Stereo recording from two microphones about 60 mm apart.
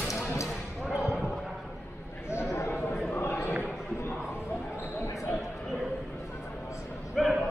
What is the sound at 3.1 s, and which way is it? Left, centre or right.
Basketball bounce, left.